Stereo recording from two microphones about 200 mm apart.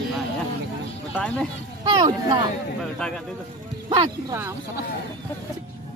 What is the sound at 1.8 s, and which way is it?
Speech, 20° right (ahead or behind).